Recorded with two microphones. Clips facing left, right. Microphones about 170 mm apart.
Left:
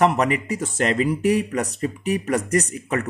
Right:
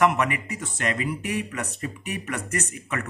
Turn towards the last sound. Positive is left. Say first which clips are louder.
# left 8 dB
turn(degrees=35)  # may be behind; listen again after turning